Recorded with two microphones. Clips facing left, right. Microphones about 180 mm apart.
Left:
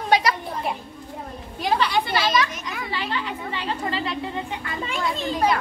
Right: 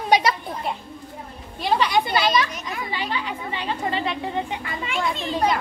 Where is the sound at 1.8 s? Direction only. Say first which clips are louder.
Right 4 dB; 20° right (ahead or behind).